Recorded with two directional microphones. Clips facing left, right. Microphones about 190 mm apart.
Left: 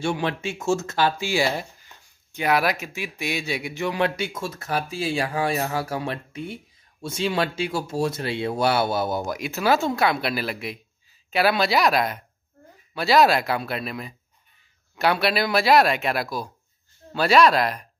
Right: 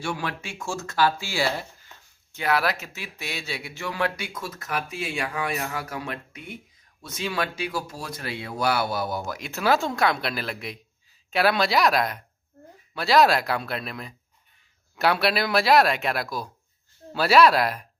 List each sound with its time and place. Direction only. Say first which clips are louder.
0.0 s speech: left 5 dB; 25° left (ahead or behind)
9.5 s speech: left 1 dB; centre (ahead or behind)